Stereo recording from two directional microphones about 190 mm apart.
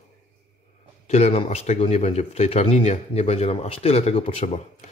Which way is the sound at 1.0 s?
35° left (ahead or behind).